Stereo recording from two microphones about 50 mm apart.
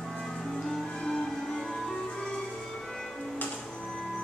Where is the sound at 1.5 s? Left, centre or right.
Centre.